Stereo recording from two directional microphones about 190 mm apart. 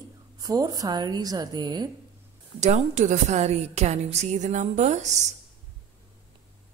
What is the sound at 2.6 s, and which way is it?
A woman's voice, 40° right (ahead or behind).